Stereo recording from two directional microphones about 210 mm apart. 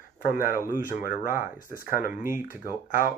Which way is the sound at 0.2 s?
45° left (ahead or behind).